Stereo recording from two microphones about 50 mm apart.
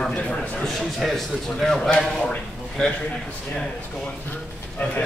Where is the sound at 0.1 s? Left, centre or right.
Left.